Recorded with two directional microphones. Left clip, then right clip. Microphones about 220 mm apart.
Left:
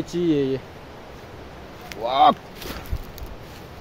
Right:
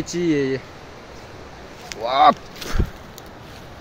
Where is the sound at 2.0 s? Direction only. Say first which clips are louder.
Right 2 dB; 10° right (ahead or behind).